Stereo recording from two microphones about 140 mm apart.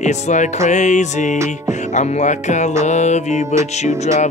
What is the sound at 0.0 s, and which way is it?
Music, 60° left (ahead or behind).